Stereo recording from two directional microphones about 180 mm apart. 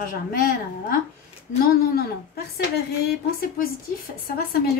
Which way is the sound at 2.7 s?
60° left (ahead or behind).